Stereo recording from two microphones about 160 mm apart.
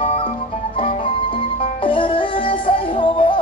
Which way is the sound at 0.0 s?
40° left (ahead or behind).